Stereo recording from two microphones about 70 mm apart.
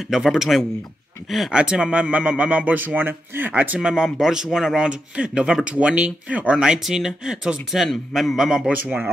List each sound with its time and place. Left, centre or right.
0.1 s a man's voice: centre
1.6 s speech: centre
3.9 s a man's voice: centre